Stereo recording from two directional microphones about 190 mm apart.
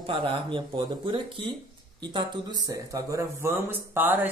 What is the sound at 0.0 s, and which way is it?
Speech, 25° right (ahead or behind).